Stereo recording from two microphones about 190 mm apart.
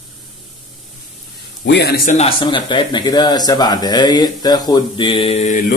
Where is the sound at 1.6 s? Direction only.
60° left (ahead or behind).